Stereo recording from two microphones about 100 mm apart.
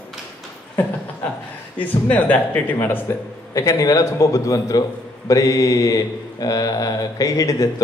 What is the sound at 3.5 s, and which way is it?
A man's voice, 35° left (ahead or behind).